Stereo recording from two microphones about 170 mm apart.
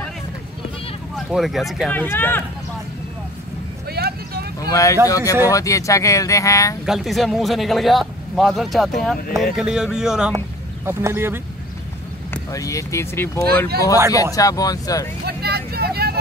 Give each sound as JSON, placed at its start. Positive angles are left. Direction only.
{"t": 1.1, "sound": "speech", "side_deg": 0}
{"t": 2.0, "sound": "speech", "side_deg": 10}
{"t": 3.9, "sound": "vehicle", "side_deg": -70}
{"t": 4.6, "sound": "a sound", "side_deg": 20}
{"t": 5.0, "sound": "speech", "side_deg": 20}
{"t": 6.9, "sound": "speech", "side_deg": 0}
{"t": 10.9, "sound": "speech", "side_deg": -15}
{"t": 12.4, "sound": "speech", "side_deg": 20}
{"t": 15.2, "sound": "vehicle", "side_deg": -70}